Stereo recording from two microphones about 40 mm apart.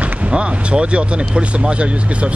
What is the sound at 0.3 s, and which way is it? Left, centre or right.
Speech, right.